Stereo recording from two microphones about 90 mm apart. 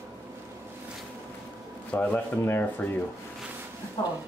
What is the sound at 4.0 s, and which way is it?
Speech, 30° left (ahead or behind).